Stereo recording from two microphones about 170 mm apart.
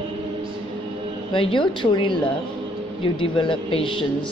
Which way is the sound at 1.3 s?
30° left (ahead or behind).